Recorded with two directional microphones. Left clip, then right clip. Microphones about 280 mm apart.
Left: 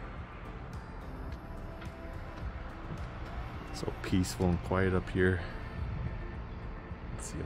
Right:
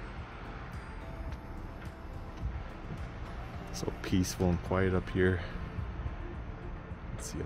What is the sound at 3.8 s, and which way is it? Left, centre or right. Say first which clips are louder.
Speech: right 1 dB; centre.